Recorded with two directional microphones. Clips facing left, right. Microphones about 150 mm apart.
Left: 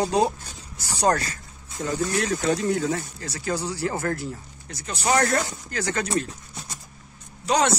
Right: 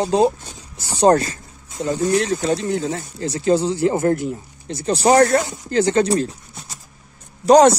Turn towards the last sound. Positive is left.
turn(degrees=-40)  # may be behind; listen again after turning